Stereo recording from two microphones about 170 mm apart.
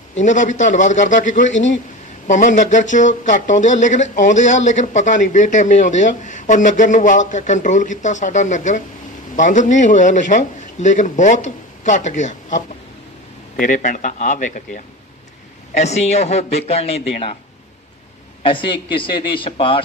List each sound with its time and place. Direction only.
0.2 s speech: 45° left (ahead or behind)
1.5 s speech: 90° left
2.2 s a man's voice: 45° left (ahead or behind)
18.4 s a man's voice: 30° left (ahead or behind)